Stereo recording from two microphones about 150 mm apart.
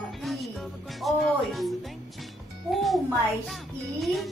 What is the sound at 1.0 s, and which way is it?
Speech, centre (ahead or behind).